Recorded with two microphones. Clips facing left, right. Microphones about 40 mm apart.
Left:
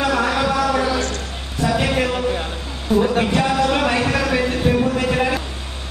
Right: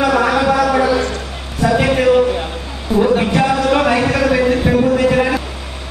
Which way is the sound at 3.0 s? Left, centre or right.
Centre.